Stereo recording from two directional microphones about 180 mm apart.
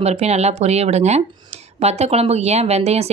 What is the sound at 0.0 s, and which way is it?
Speech, 35° right (ahead or behind).